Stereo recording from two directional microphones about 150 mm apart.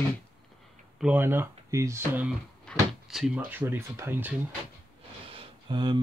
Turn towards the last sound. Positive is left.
turn(degrees=-30)  # may be behind; listen again after turning